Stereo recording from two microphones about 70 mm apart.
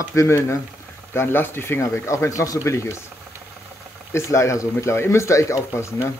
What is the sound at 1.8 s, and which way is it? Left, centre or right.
Speech, left.